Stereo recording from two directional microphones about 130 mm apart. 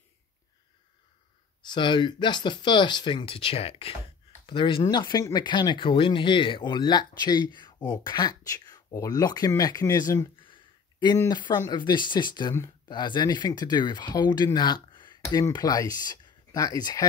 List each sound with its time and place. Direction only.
1.6 s speech: 35° left (ahead or behind)
10.4 s a sound: 40° left (ahead or behind)
11.1 s speech: 35° left (ahead or behind)